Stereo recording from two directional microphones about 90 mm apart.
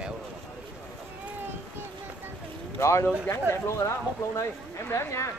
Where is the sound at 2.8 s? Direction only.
30° left (ahead or behind).